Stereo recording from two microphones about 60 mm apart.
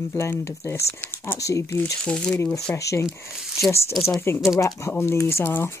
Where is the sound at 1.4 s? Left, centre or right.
Left.